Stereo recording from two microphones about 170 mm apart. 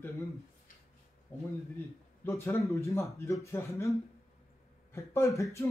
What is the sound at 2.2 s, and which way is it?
Speech, 15° left (ahead or behind).